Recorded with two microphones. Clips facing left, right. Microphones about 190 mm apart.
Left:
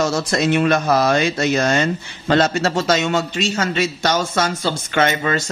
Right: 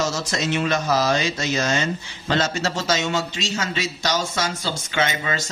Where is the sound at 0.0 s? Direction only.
60° left (ahead or behind).